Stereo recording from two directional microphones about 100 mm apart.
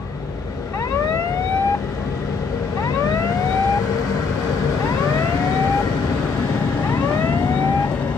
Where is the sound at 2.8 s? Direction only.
35° left (ahead or behind).